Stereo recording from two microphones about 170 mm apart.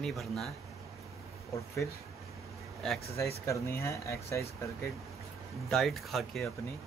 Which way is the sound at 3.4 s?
20° left (ahead or behind).